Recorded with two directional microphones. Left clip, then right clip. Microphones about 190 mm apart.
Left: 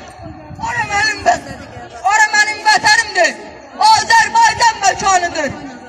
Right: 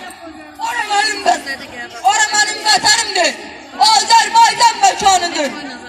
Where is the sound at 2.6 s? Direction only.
10° right (ahead or behind).